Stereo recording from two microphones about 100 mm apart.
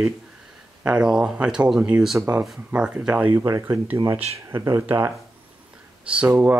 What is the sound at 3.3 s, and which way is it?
Speech, 30° right (ahead or behind).